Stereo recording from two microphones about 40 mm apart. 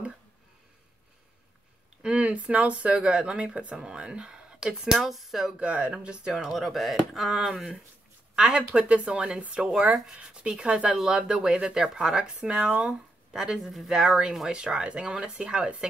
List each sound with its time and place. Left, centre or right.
2.0 s speech: right; by 4.9 s centre
4.9 s speech: centre
5.6 s speech: right
6.0 s speech: centre
6.4 s speech: centre
8.7 s speech: right; by 12.4 s centre
12.4 s speech: right
13.3 s speech: centre
14.5 s speech: centre